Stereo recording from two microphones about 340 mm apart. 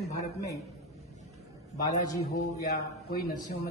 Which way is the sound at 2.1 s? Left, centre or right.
Centre.